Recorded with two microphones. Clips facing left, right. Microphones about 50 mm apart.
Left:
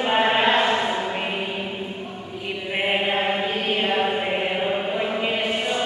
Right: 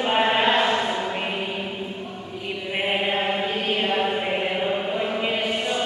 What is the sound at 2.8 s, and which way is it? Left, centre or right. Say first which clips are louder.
Chant: left 1 dB; centre.